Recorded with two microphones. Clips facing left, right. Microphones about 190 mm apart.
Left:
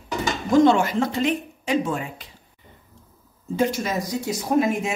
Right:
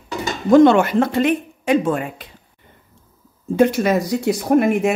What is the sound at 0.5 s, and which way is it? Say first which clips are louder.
A woman's voice: right 6 dB; 60° right (ahead or behind).